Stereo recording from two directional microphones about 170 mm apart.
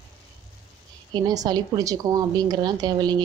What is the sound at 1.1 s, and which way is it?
A woman's voice, 25° right (ahead or behind).